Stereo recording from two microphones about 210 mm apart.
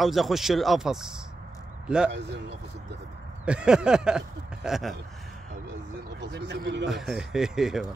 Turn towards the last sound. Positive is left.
turn(degrees=0)  # may be behind; listen again after turning